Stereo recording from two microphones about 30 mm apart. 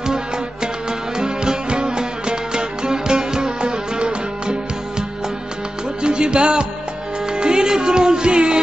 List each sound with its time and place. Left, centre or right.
1.1 s music: right
6.0 s music: right